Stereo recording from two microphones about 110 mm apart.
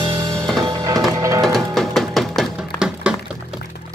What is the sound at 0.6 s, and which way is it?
Music, 35° right (ahead or behind).